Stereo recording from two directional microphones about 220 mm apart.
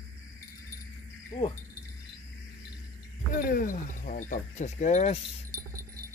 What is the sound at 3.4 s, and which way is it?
Cricket, 40° left (ahead or behind).